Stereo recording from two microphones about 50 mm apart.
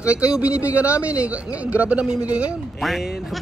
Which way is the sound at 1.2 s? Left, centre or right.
Right.